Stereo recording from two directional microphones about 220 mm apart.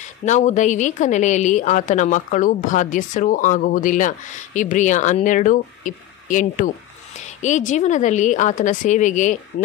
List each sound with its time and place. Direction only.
0.0 s a woman's voice: 35° left (ahead or behind)